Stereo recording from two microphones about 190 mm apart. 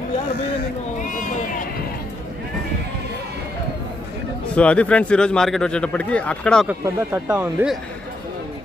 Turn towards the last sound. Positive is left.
turn(degrees=-5)  # may be behind; listen again after turning